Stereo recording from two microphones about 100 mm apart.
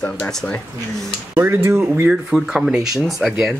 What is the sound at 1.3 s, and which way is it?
Speech, 20° right (ahead or behind).